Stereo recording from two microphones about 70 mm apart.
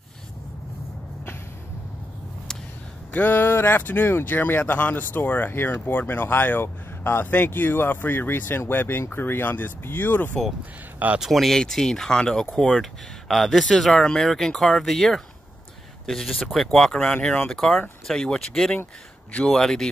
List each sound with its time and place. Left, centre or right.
3.1 s speech: left
11.1 s speech: centre